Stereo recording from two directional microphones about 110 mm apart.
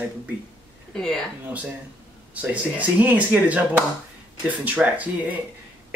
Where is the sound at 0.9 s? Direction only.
5° left (ahead or behind).